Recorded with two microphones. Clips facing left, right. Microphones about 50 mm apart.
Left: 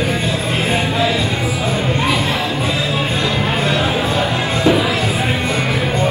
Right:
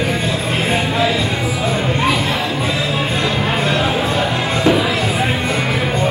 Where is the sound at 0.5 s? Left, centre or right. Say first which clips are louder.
Right 1 dB; right.